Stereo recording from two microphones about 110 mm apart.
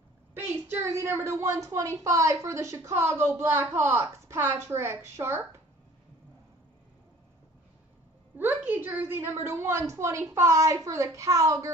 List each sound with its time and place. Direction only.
0.3 s a woman's voice: 20° right (ahead or behind)
8.4 s a woman's voice: 20° right (ahead or behind)